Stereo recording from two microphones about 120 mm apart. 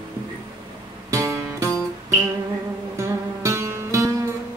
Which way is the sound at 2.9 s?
25° right (ahead or behind).